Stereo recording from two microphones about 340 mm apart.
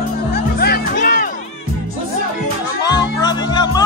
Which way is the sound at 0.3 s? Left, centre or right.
Left.